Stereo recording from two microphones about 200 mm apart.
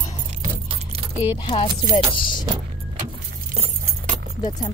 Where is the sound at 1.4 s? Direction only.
25° left (ahead or behind).